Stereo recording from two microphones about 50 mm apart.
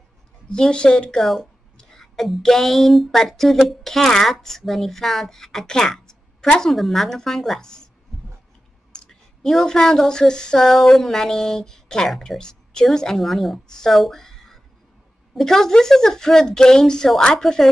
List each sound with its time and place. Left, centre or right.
0.5 s speech: centre
1.2 s a woman's voice: centre
6.6 s a woman's voice: centre
8.9 s a woman's voice: centre